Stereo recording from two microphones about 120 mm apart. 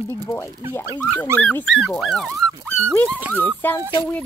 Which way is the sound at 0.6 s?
30° right (ahead or behind).